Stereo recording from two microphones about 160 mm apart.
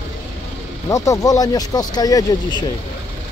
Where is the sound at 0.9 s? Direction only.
20° left (ahead or behind).